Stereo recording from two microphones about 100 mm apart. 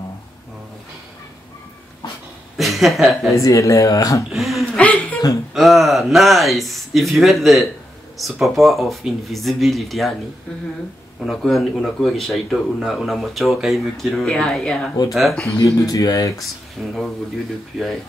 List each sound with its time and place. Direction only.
2.5 s a woman's voice: centre (ahead or behind)
3.3 s speech: 35° left (ahead or behind)
4.3 s speech: centre (ahead or behind)
4.7 s chuckle: 15° left (ahead or behind)
5.5 s speech: centre (ahead or behind)
11.1 s speech: centre (ahead or behind)
15.6 s speech: 35° left (ahead or behind)
16.8 s speech: 5° left (ahead or behind)